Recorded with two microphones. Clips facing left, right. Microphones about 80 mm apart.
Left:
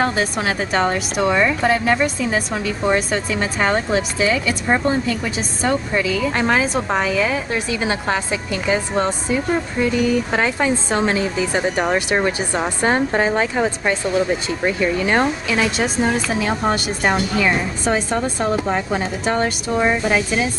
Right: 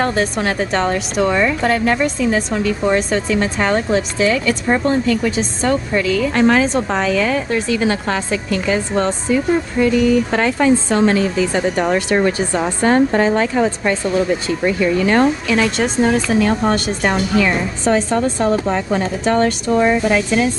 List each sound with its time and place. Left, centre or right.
0.0 s a woman's voice: centre
15.4 s a woman's voice: centre